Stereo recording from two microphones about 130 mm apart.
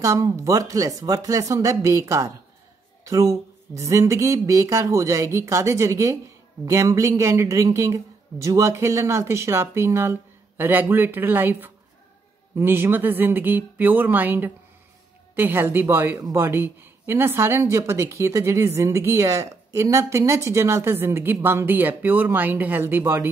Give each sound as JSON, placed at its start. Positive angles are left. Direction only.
{"t": 0.0, "sound": "a woman's voice", "side_deg": -25}